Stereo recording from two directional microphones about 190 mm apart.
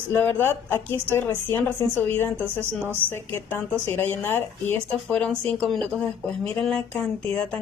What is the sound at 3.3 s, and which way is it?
Speech, 10° left (ahead or behind).